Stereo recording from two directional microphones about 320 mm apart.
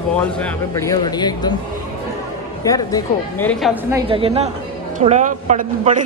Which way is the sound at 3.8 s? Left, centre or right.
Centre.